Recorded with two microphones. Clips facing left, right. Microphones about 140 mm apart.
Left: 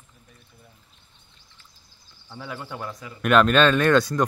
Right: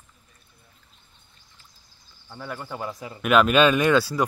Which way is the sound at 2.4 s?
Centre (ahead or behind).